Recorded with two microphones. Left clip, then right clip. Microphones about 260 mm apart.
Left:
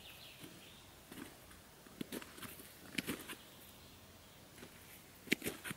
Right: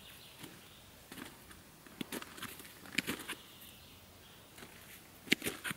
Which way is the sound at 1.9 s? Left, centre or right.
Centre.